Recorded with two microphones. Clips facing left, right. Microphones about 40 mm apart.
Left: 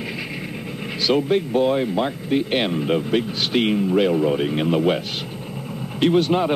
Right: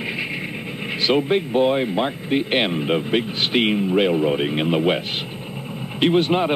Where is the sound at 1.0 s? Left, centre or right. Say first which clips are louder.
Even; right.